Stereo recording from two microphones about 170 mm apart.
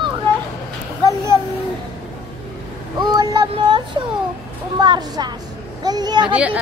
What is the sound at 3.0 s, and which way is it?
Speech, 25° right (ahead or behind).